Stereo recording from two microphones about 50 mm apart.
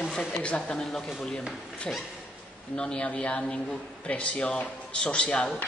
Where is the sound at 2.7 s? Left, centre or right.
Centre.